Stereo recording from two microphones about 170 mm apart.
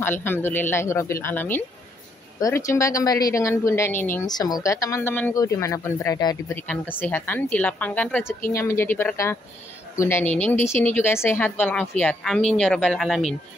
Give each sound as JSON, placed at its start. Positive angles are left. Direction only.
{"t": 0.0, "sound": "a woman's voice", "side_deg": 10}